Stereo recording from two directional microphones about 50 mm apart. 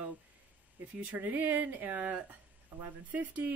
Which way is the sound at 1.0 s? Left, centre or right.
Right.